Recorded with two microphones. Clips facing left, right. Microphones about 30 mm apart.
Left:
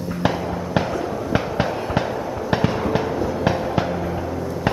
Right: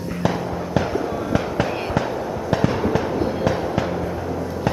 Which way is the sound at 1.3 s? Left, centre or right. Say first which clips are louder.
Left 1 dB; left.